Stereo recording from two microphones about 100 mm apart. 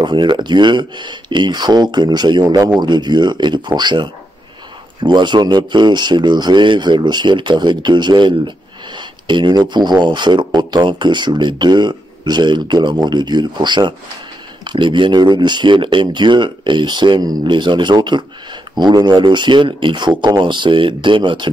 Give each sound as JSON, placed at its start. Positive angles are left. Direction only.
{"t": 0.0, "sound": "speech", "side_deg": -50}